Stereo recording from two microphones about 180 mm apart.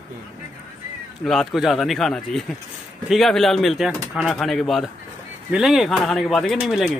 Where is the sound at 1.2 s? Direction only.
Centre (ahead or behind).